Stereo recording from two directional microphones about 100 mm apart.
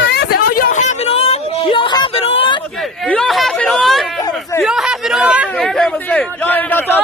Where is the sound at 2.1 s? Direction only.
75° left (ahead or behind).